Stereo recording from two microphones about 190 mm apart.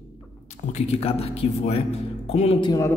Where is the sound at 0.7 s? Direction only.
30° left (ahead or behind).